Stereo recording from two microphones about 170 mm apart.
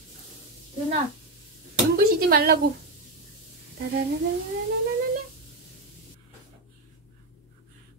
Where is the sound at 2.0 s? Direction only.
60° right (ahead or behind).